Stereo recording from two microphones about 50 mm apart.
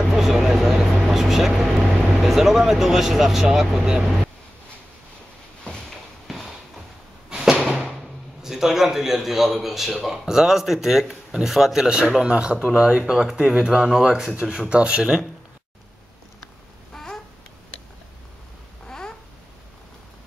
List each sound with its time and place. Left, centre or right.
0.1 s speech: centre
5.6 s a sound: centre
7.2 s a sound: centre
8.4 s a man's voice: centre
13.0 s a man's voice: centre
14.7 s speech: right
16.9 s babbling: centre
18.9 s babbling: centre